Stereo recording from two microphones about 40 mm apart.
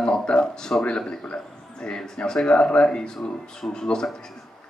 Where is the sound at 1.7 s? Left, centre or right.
Centre.